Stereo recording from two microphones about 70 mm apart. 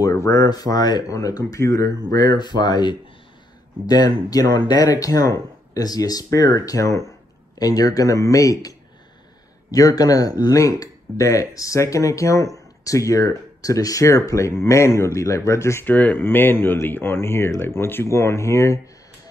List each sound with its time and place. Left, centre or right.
0.0 s a sound: left
0.5 s speech: left
3.8 s speech: left
7.5 s speech: left
15.9 s speech: left